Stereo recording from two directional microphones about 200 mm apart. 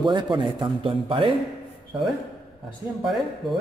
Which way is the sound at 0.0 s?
20° right (ahead or behind).